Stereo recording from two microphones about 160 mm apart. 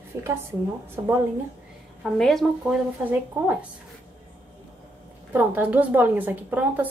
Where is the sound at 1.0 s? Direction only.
25° right (ahead or behind).